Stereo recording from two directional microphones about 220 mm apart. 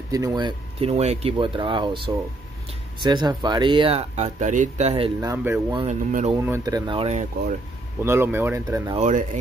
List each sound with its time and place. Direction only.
0.1 s speech: 15° right (ahead or behind)
5.3 s speech: 10° right (ahead or behind)
5.8 s speech: 30° right (ahead or behind)
6.3 s speech: 15° right (ahead or behind); by 7.5 s 30° right (ahead or behind)
8.0 s speech: 10° right (ahead or behind)
8.9 s speech: 35° right (ahead or behind)